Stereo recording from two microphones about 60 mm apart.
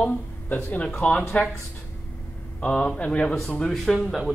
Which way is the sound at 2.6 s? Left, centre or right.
Left.